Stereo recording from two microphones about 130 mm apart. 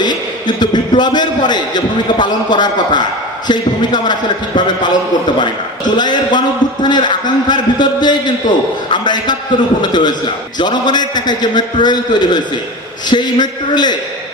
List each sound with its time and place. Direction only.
0.6 s a man's voice: 35° left (ahead or behind)
5.9 s a man's voice: 35° left (ahead or behind)